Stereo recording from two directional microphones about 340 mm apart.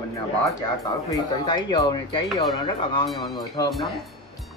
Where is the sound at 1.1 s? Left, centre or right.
Centre.